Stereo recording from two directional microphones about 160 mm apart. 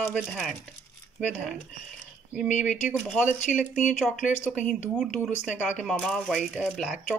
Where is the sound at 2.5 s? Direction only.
50° left (ahead or behind).